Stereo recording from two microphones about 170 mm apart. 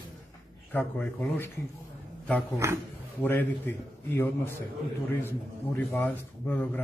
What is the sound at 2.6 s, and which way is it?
Speech, 15° right (ahead or behind).